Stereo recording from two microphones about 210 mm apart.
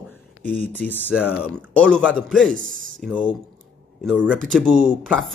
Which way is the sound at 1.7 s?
5° left (ahead or behind).